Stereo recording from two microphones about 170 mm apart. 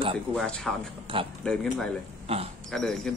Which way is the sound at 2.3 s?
35° right (ahead or behind).